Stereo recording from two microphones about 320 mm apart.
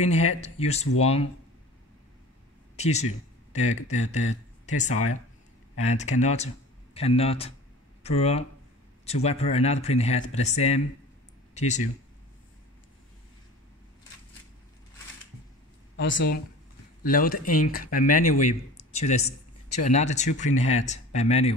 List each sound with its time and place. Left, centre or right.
0.0 s speech: left
2.7 s speech: left
3.9 s speech: left
5.9 s speech: left
16.0 s speech: left; by 21.5 s centre